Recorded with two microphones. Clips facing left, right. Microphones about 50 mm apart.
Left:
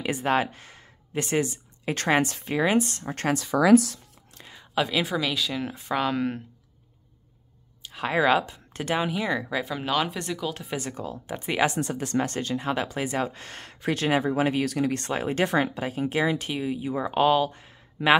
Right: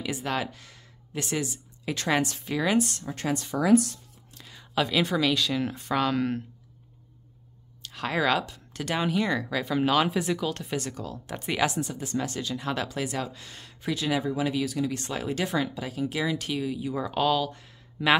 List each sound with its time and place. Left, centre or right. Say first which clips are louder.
0.0 s speech: left 5 dB; left
3.5 s speech: left 6 dB; left
4.4 s a sound: left 2 dB; left
4.7 s speech: even; centre
7.8 s speech: left 3 dB; centre
8.9 s speech: even; centre
9.7 s speech: right 6 dB; centre
10.8 s speech: left 2 dB; left
11.8 s speech: left 4 dB; left
12.2 s speech: left 4 dB; left
12.5 s speech: left 2 dB; left
13.8 s speech: left 3 dB; left